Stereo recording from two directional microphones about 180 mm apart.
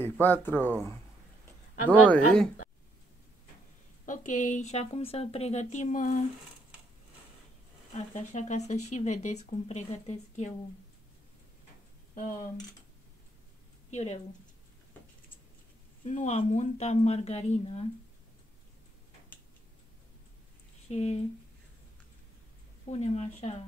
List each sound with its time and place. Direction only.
0.0 s speech: 10° left (ahead or behind)
1.9 s speech: 5° left (ahead or behind)
4.0 s speech: 45° left (ahead or behind)
7.9 s speech: 40° left (ahead or behind)
13.8 s speech: 40° left (ahead or behind)
16.1 s speech: 40° left (ahead or behind)
20.9 s speech: 35° left (ahead or behind)
22.8 s speech: 35° left (ahead or behind)